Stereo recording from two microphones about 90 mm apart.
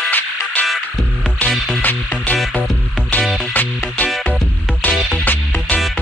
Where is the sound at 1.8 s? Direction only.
15° left (ahead or behind).